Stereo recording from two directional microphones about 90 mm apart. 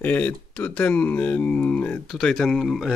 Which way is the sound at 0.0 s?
15° left (ahead or behind).